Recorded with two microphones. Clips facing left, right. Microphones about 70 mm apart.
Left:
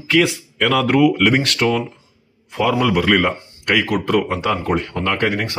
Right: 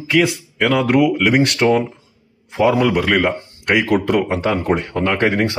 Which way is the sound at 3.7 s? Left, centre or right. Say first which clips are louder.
Right 2 dB; right.